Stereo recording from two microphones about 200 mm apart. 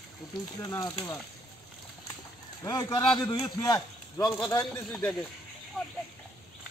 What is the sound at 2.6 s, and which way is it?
A man's voice, 20° left (ahead or behind).